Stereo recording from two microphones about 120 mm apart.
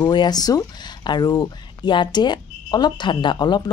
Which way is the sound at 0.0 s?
35° left (ahead or behind).